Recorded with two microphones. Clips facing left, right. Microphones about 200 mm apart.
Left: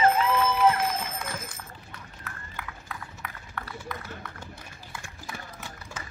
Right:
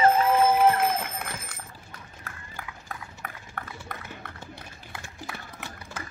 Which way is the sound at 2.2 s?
45° right (ahead or behind).